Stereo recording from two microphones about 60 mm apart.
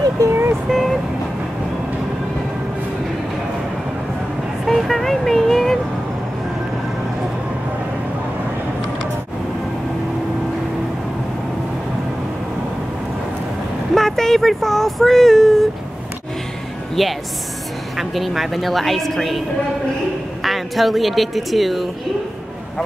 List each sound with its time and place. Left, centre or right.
0.2 s vehicle: right
0.7 s vehicle: centre
4.6 s vehicle: centre
13.9 s a sound: centre
17.0 s a woman's voice: centre
20.4 s speech: centre